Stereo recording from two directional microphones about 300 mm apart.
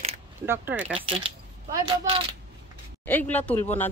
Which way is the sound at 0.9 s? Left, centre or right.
Centre.